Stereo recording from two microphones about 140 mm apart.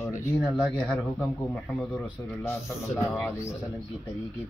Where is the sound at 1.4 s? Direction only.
15° left (ahead or behind).